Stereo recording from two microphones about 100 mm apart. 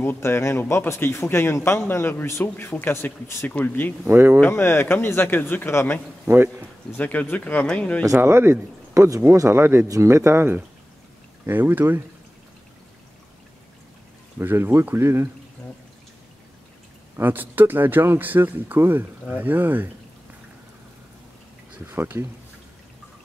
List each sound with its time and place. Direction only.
0.0 s speech: 20° left (ahead or behind)
4.1 s speech: 25° right (ahead or behind)
4.4 s speech: 20° left (ahead or behind)
6.2 s a man's voice: 25° right (ahead or behind)
7.0 s speech: 15° left (ahead or behind)
8.2 s speech: 25° right (ahead or behind)
14.4 s speech: 20° right (ahead or behind)
17.2 s speech: 20° right (ahead or behind)
21.7 s speech: 20° right (ahead or behind)